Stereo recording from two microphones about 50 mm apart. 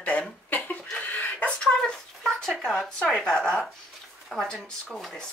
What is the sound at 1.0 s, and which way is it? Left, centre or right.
Chicken, left.